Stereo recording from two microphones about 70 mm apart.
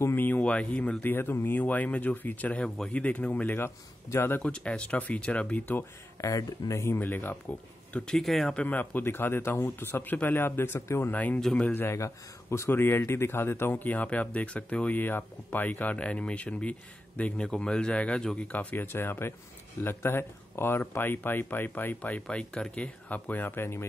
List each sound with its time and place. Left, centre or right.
0.0 s speech: left
1.0 s speech: left
3.5 s a man's voice: left
4.4 s speech: centre
6.2 s speech: left
7.0 s speech: left
8.2 s speech: centre
8.5 s a man's voice: left
11.1 s speech: left
11.7 s speech: left